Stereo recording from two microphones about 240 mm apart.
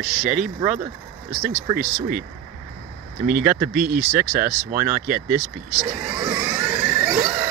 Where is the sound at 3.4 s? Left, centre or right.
Centre.